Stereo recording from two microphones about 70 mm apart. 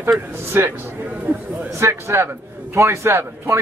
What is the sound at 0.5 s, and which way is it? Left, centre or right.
Speech, right.